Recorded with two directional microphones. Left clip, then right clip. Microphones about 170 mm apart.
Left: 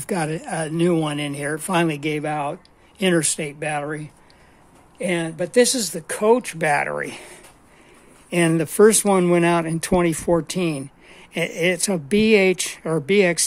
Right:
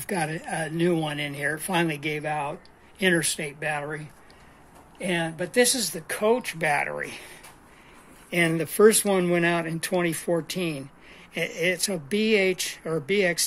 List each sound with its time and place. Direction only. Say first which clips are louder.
0.0 s speech: left 4 dB; 50° left (ahead or behind)